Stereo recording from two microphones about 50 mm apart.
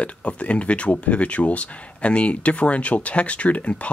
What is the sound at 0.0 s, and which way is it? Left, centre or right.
Speech, left.